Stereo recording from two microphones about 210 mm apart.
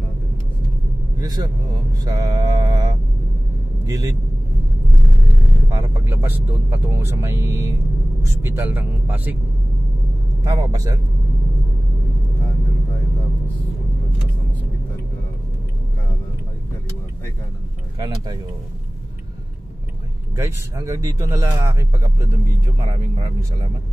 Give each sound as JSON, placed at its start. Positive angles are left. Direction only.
{"t": 1.2, "sound": "speech", "side_deg": -20}
{"t": 5.7, "sound": "speech", "side_deg": -15}
{"t": 10.4, "sound": "speech", "side_deg": -15}
{"t": 17.9, "sound": "speech", "side_deg": -20}
{"t": 20.3, "sound": "speech", "side_deg": -15}